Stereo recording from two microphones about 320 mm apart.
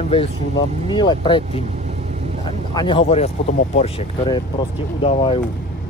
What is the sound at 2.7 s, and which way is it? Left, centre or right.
Speech, centre.